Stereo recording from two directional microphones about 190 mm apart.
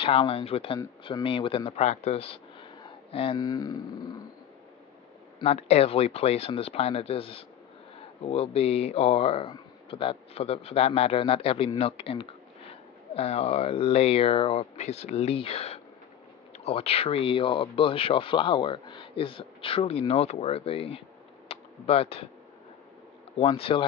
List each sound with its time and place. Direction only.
0.0 s speech: 30° left (ahead or behind)
5.4 s speech: 35° left (ahead or behind)
21.5 s a sound: 30° left (ahead or behind)
23.3 s speech: 30° left (ahead or behind)